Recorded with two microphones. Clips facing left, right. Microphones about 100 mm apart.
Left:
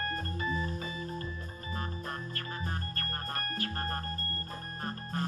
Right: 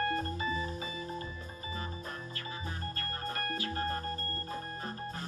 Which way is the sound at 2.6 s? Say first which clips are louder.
Left 1 dB; 50° left (ahead or behind).